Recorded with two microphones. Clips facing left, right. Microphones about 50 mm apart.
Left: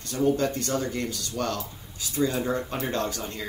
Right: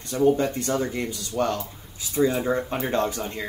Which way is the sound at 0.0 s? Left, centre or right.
Right.